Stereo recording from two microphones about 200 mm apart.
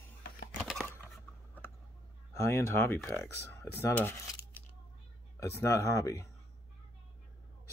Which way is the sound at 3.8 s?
10° left (ahead or behind).